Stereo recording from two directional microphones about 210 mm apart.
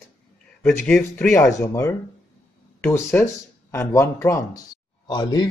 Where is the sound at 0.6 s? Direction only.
5° left (ahead or behind).